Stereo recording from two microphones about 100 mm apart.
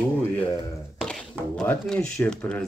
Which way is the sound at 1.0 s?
5° left (ahead or behind).